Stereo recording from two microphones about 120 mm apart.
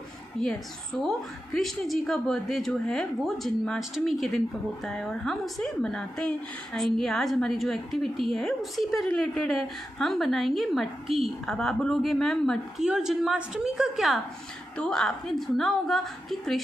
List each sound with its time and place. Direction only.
0.4 s a woman's voice: 5° left (ahead or behind)